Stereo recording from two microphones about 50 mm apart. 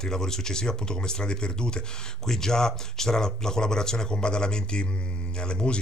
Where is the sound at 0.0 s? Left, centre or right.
Centre.